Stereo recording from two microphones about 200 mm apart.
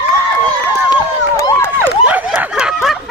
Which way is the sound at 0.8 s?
15° left (ahead or behind).